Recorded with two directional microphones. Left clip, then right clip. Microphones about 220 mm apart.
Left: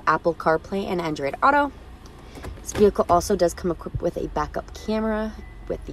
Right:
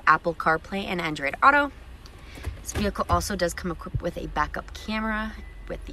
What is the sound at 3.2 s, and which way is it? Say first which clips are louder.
Speech: left 6 dB; 30° left (ahead or behind).